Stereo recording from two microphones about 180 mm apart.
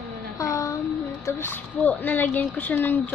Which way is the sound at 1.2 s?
10° left (ahead or behind).